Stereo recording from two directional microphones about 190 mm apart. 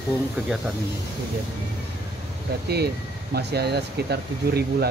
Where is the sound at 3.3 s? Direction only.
60° right (ahead or behind).